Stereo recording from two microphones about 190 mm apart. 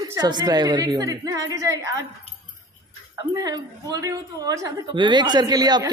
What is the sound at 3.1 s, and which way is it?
A woman's voice, 20° right (ahead or behind).